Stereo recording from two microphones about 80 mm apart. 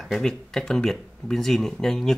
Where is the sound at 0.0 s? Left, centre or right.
Centre.